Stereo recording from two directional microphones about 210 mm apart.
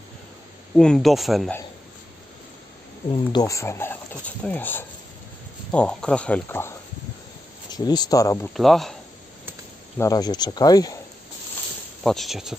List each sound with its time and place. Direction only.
0.7 s speech: centre (ahead or behind)
3.1 s speech: 20° left (ahead or behind)
7.7 s speech: 20° left (ahead or behind)
8.5 s speech: centre (ahead or behind)
9.9 s speech: 15° left (ahead or behind)
12.0 s speech: centre (ahead or behind)